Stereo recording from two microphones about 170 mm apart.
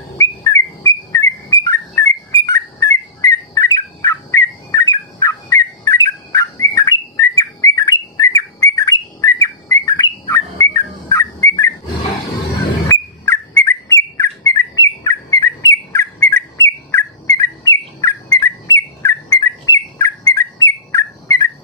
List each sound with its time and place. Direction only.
0.2 s bird: 20° left (ahead or behind)
12.8 s bird: 15° left (ahead or behind)